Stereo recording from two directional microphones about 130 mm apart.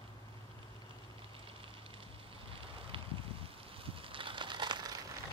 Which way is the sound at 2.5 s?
45° right (ahead or behind).